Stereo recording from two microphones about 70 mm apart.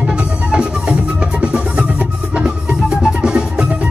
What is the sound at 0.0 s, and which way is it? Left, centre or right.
Music, centre.